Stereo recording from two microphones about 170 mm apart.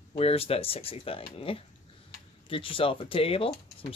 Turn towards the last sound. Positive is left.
turn(degrees=35)  # may be behind; listen again after turning